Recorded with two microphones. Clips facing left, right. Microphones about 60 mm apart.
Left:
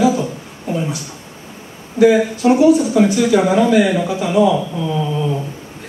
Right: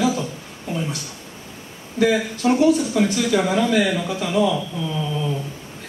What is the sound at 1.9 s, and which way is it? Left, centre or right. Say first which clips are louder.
Speech: left 7 dB; centre.